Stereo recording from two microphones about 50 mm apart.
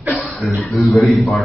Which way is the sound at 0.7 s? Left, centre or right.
Left.